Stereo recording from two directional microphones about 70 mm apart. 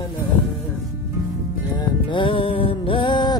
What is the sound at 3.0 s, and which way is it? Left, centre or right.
Music, left.